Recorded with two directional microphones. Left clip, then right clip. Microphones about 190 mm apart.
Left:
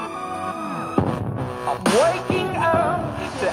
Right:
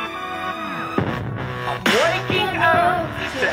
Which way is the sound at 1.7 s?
45° left (ahead or behind).